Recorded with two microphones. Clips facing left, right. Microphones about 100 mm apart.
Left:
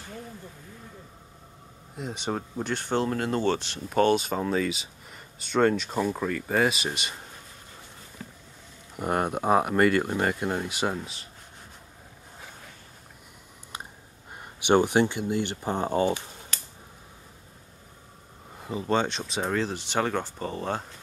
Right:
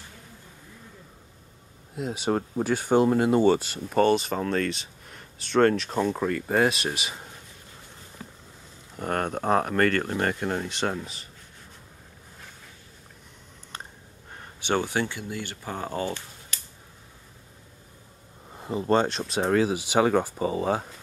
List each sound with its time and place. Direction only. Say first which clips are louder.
2.0 s speech: right 5 dB; centre (ahead or behind)
8.9 s speech: left 1 dB; 10° left (ahead or behind)
14.3 s speech: left 5 dB; 15° left (ahead or behind)
18.6 s speech: right 3 dB; centre (ahead or behind)